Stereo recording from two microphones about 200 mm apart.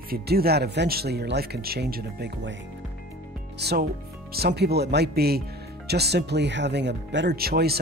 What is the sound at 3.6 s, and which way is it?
Speech, 55° right (ahead or behind).